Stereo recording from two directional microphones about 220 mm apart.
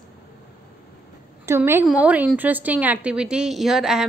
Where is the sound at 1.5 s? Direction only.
10° right (ahead or behind).